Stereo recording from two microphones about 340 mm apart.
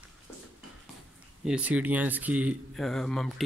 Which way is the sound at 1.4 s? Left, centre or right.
Centre.